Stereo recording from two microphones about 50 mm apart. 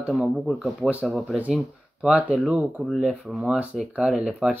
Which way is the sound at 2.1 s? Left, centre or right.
Right.